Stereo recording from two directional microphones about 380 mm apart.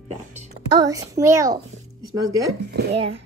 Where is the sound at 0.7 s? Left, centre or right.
Centre.